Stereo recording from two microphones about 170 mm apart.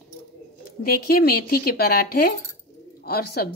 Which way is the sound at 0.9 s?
65° left (ahead or behind).